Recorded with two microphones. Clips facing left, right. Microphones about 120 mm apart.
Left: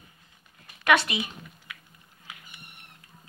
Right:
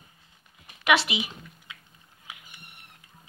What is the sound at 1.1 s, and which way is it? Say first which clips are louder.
Speech: even; 15° right (ahead or behind).